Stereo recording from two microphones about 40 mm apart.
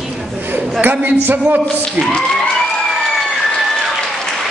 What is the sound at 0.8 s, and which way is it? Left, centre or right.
Speech, right.